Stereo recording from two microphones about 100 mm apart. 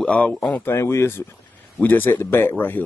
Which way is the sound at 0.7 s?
25° left (ahead or behind).